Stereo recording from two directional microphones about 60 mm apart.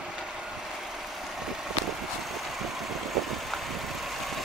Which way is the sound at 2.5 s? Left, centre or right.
Centre.